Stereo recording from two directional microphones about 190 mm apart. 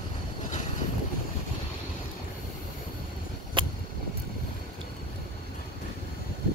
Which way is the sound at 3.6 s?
25° right (ahead or behind).